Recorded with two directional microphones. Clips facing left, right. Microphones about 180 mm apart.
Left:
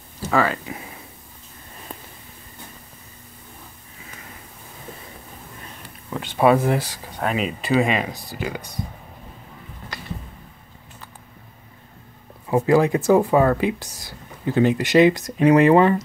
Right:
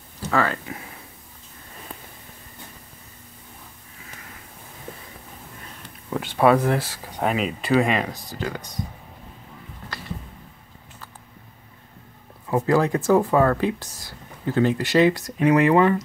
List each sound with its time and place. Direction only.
0.2 s speech: 10° left (ahead or behind)
6.0 s speech: 5° right (ahead or behind)
6.9 s speech: 10° right (ahead or behind)
7.3 s speech: centre (ahead or behind)
12.4 s speech: 15° left (ahead or behind); by 16.0 s 30° left (ahead or behind)